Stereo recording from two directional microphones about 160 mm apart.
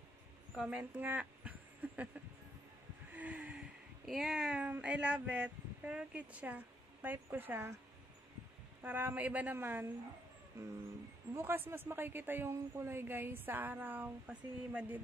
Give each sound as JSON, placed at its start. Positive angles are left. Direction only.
{"t": 0.6, "sound": "speech", "side_deg": -10}
{"t": 8.8, "sound": "a woman's voice", "side_deg": -10}